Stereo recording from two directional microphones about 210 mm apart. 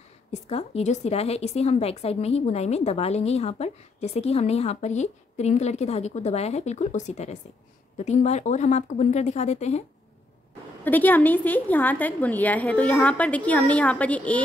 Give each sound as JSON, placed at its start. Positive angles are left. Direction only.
{"t": 0.3, "sound": "a woman's voice", "side_deg": 30}
{"t": 10.8, "sound": "a woman's voice", "side_deg": 10}